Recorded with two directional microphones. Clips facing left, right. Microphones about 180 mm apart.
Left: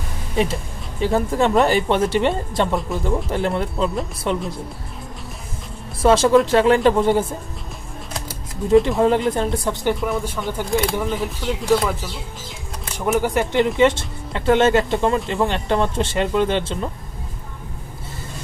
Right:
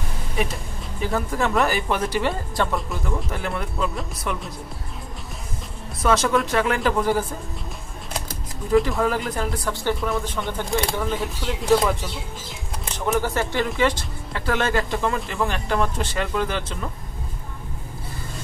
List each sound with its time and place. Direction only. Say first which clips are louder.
0.4 s speech: left 6 dB; 25° left (ahead or behind)
6.0 s speech: left 6 dB; 30° left (ahead or behind)
8.6 s speech: left 5 dB; 25° left (ahead or behind)
10.1 s speech: left 2 dB; 5° left (ahead or behind)
12.9 s speech: left 4 dB; 10° left (ahead or behind)